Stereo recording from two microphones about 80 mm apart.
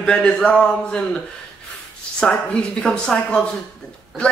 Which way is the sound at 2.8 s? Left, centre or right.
Centre.